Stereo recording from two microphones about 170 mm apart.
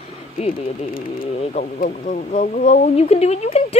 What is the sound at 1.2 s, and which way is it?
A woman's voice, 40° left (ahead or behind).